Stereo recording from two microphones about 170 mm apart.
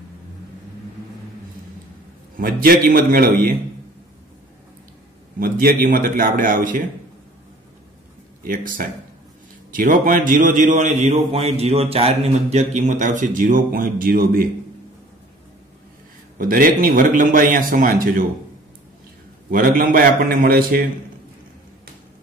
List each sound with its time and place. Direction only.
2.3 s a man's voice: 55° right (ahead or behind)
5.4 s a man's voice: 60° right (ahead or behind)
8.4 s a man's voice: 55° right (ahead or behind)
16.3 s a man's voice: 55° right (ahead or behind)
19.5 s a man's voice: 55° right (ahead or behind)